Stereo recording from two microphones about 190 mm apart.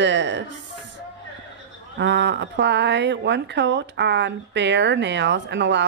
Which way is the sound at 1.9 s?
65° right (ahead or behind).